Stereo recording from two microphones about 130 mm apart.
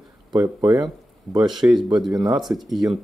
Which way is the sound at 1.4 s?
5° right (ahead or behind).